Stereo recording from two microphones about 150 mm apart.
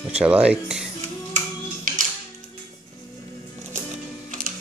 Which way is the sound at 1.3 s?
60° right (ahead or behind).